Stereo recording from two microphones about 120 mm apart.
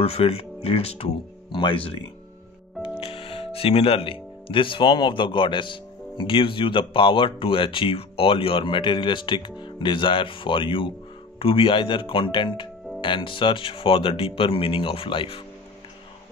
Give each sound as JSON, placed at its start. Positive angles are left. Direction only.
{"t": 0.0, "sound": "speech", "side_deg": 55}